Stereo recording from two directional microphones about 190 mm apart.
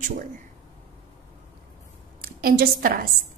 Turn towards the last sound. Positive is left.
turn(degrees=-50)  # may be behind; listen again after turning